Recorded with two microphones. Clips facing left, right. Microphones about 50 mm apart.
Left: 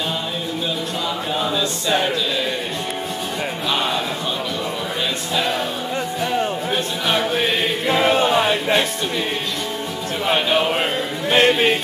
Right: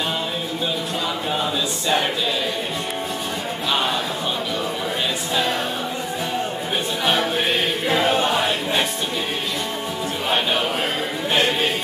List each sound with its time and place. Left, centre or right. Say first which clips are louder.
11.3 s music: left 5 dB; left